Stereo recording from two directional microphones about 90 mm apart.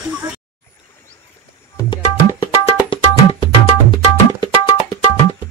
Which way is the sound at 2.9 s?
80° left.